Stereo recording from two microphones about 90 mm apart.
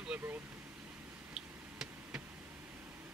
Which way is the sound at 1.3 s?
5° right (ahead or behind).